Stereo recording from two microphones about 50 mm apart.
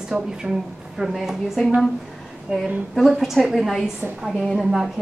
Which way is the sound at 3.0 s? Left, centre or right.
Centre.